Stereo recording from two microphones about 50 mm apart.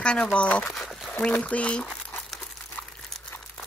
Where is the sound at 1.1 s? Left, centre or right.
Left.